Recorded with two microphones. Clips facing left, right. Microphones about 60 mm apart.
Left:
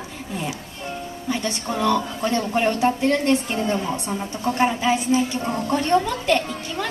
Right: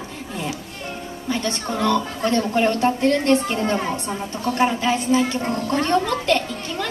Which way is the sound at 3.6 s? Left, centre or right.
Right.